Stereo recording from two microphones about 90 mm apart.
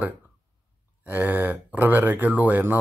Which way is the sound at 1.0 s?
20° right (ahead or behind).